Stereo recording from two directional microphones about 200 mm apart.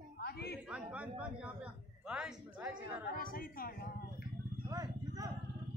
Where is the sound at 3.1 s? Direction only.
45° left (ahead or behind).